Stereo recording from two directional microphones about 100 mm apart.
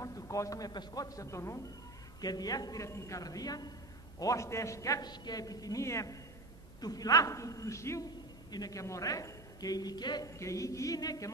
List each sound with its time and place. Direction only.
0.0 s a man's voice: 35° left (ahead or behind)
2.2 s a man's voice: 40° left (ahead or behind)
8.5 s a man's voice: 40° left (ahead or behind)
10.4 s a man's voice: 30° left (ahead or behind)